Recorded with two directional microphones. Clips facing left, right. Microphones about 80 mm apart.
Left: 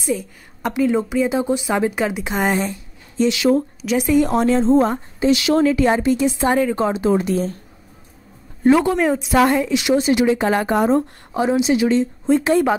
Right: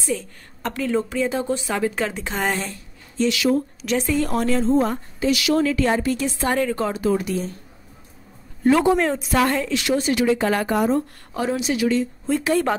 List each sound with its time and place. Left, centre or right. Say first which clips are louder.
0.0 s a woman's voice: left 3 dB; centre; by 7.5 s left
8.9 s a woman's voice: left 3 dB; centre; by 11.1 s left
11.3 s a woman's voice: left 6 dB; left